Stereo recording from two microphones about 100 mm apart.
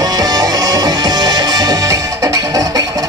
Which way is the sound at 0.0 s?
40° right (ahead or behind).